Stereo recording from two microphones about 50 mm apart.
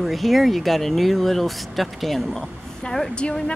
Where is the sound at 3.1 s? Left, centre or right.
Centre.